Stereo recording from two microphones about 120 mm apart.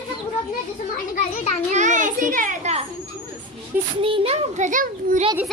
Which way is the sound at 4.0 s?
50° right (ahead or behind).